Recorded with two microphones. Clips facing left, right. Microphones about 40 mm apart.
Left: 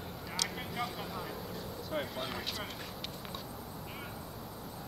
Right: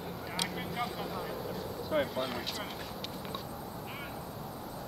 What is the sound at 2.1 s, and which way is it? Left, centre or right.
Speech, centre.